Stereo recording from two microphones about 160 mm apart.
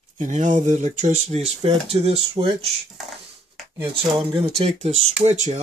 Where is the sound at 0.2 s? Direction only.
50° right (ahead or behind).